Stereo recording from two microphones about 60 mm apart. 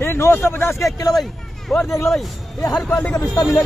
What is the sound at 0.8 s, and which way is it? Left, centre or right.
Speech, left.